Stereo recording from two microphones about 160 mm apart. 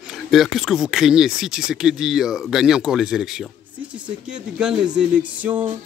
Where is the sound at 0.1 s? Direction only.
Centre (ahead or behind).